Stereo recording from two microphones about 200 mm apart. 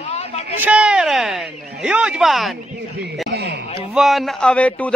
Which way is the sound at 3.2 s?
55° right (ahead or behind).